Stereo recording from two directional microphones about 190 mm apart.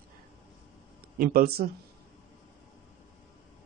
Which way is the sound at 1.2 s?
50° right (ahead or behind).